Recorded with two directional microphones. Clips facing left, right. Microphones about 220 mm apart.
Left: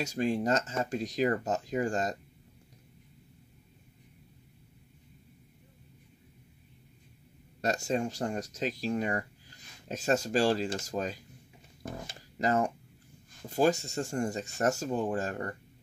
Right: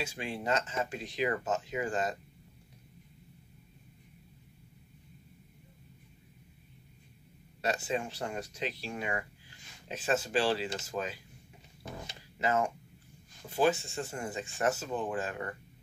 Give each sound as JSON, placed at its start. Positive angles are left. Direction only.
{"t": 0.0, "sound": "speech", "side_deg": 40}
{"t": 7.6, "sound": "speech", "side_deg": 45}
{"t": 11.8, "sound": "a sound", "side_deg": 45}
{"t": 13.5, "sound": "speech", "side_deg": 40}